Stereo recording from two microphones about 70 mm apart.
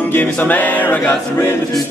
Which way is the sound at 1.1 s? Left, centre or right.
Left.